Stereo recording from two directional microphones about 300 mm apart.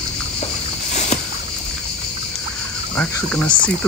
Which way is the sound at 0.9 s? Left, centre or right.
Left.